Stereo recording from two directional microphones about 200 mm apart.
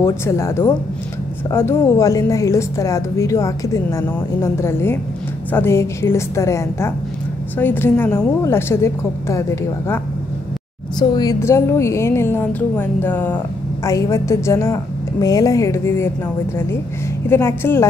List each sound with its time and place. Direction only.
0.0 s a woman's voice: 15° left (ahead or behind)
11.0 s a woman's voice: 20° left (ahead or behind)
17.3 s a woman's voice: 10° left (ahead or behind)